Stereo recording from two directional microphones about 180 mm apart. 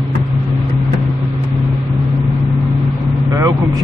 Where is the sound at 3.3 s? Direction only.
20° right (ahead or behind).